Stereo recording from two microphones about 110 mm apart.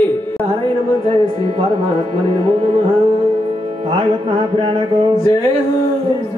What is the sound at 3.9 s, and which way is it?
Mantra, 50° right (ahead or behind).